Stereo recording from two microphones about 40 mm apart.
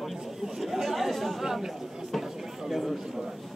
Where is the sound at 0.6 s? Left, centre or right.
Centre.